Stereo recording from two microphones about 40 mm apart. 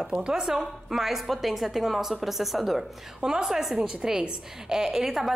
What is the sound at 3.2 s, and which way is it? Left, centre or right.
A woman's voice, centre.